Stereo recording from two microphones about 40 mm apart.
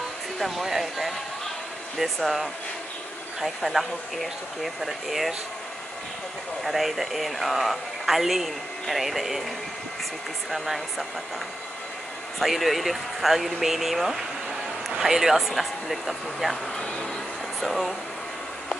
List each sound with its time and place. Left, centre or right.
0.4 s speech: centre
6.6 s speech: centre
10.5 s speech: centre
12.4 s speech: centre
15.3 s speech: centre
16.7 s speech: left
17.6 s speech: centre